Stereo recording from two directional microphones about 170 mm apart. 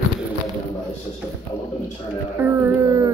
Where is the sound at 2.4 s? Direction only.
10° right (ahead or behind).